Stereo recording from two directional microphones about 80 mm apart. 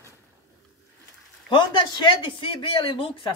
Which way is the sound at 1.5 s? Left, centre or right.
Left.